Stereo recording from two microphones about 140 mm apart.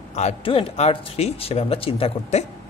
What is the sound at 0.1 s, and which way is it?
Speech, 50° left (ahead or behind).